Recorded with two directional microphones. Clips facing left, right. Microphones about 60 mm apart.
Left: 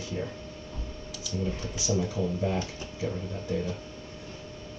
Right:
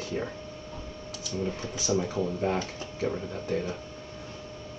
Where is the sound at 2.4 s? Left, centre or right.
Right.